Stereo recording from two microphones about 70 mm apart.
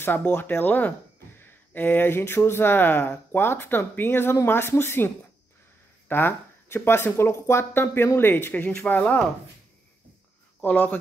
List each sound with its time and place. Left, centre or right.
0.5 s speech: left
10.6 s speech: left